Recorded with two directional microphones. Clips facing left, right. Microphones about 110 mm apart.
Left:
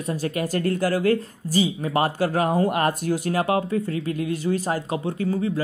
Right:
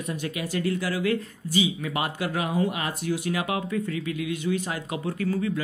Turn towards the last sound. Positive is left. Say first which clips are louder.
# left 2 dB
turn(degrees=30)  # may be behind; listen again after turning